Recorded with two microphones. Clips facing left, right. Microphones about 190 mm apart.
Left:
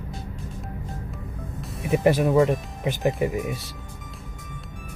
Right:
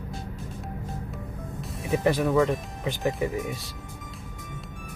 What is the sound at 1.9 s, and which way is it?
Speech, 15° left (ahead or behind).